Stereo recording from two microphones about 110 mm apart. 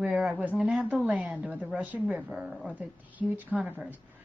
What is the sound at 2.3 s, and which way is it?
A woman's voice, centre (ahead or behind).